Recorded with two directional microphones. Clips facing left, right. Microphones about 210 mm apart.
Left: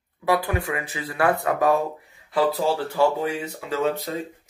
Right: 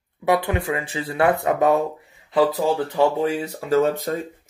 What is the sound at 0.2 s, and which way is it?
Speech, 20° right (ahead or behind).